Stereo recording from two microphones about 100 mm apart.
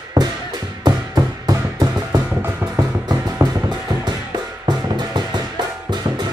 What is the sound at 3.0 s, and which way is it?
Music, 40° right (ahead or behind).